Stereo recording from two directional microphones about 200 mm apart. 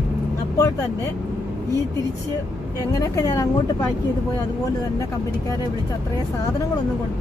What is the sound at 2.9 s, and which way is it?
Speech, 15° left (ahead or behind).